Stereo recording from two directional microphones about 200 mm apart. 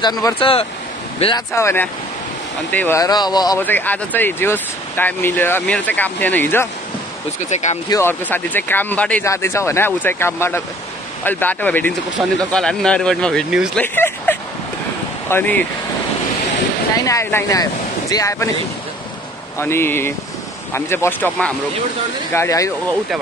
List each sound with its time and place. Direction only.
0.0 s speech: 20° left (ahead or behind)
1.5 s speech: 15° left (ahead or behind)
3.6 s speech: 10° left (ahead or behind)
7.3 s speech: 35° left (ahead or behind)
7.9 s speech: 10° left (ahead or behind)
13.9 s a sound: 10° left (ahead or behind)
15.2 s speech: 10° left (ahead or behind)
16.9 s speech: 15° left (ahead or behind)
19.6 s speech: 10° left (ahead or behind)